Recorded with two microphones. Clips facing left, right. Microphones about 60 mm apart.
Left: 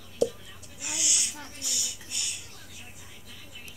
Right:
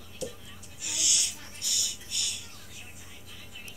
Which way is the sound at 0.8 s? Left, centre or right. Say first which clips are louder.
Even; left.